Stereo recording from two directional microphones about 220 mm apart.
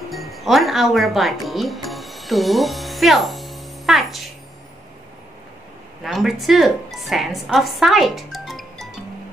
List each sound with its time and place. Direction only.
0.1 s speech: centre (ahead or behind)
6.0 s speech: centre (ahead or behind)